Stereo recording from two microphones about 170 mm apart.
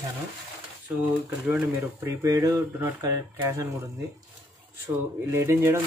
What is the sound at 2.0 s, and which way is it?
Speech, 20° right (ahead or behind).